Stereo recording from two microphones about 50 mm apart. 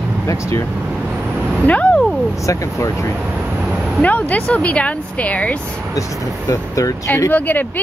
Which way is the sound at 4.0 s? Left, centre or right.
Left.